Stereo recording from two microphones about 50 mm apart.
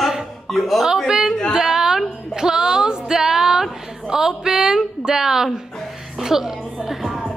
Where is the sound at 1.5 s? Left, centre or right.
Centre.